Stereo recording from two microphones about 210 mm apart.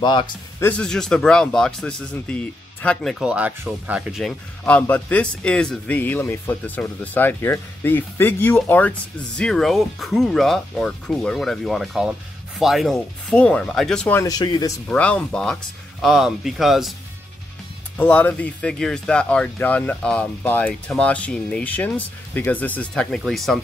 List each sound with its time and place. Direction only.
0.0 s speech: 20° left (ahead or behind)
0.7 s speech: 5° left (ahead or behind)
14.4 s speech: 20° left (ahead or behind)
14.9 s speech: 5° left (ahead or behind)
17.9 s speech: 10° left (ahead or behind)